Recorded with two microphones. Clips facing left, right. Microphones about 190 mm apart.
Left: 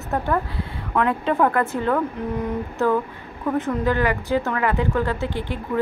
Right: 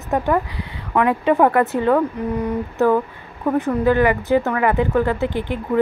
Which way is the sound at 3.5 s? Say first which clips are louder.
Right 5 dB; 15° right (ahead or behind).